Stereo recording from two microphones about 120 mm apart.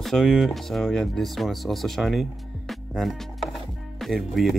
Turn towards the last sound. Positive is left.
turn(degrees=0)  # may be behind; listen again after turning